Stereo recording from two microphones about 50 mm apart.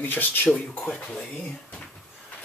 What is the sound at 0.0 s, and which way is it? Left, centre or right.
Speech, left.